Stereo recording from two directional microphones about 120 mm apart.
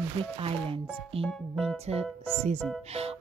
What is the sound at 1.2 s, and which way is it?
Speech, centre (ahead or behind).